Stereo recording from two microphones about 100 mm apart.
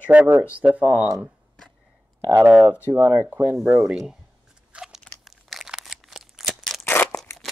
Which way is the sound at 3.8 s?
5° right (ahead or behind).